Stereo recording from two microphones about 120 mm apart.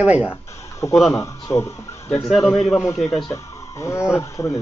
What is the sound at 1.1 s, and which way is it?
Speech, 25° left (ahead or behind).